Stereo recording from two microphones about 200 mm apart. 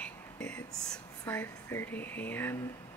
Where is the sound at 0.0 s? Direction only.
5° left (ahead or behind).